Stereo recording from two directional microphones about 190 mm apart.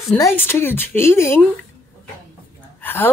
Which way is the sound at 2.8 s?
10° left (ahead or behind).